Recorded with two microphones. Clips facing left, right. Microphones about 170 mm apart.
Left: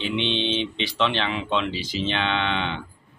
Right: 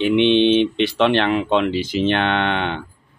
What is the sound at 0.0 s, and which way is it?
Speech, 55° right (ahead or behind).